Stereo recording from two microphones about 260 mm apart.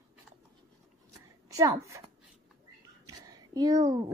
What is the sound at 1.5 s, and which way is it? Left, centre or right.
Speech, centre.